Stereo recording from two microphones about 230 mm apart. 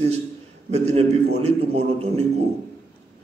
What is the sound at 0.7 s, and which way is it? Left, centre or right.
A man's voice, right.